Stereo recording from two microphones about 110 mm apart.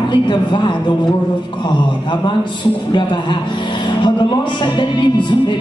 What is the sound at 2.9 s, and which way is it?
Music, 45° left (ahead or behind).